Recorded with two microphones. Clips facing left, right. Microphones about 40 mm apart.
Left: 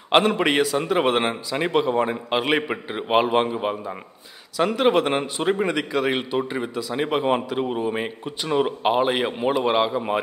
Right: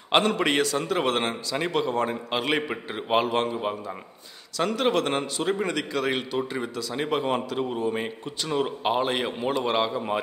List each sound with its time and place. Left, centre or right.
0.1 s a man's voice: centre